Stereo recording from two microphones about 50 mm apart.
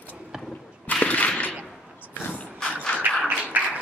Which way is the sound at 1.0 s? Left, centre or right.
Left.